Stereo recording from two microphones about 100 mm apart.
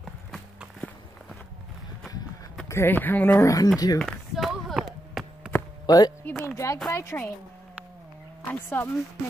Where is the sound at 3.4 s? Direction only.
35° left (ahead or behind).